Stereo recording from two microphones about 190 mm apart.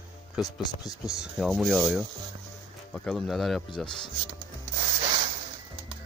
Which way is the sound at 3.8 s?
25° left (ahead or behind).